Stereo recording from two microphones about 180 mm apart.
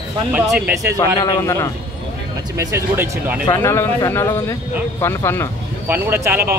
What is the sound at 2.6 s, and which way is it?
Speech, 15° right (ahead or behind).